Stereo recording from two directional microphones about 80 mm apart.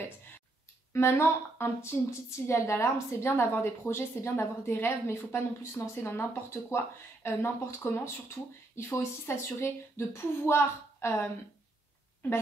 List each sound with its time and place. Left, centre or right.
0.9 s a woman's voice: left